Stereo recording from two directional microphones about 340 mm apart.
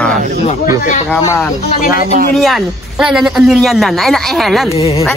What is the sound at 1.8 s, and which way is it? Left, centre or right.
Speech, left.